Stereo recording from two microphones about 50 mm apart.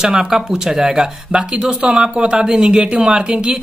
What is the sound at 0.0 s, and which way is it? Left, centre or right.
Speech, centre.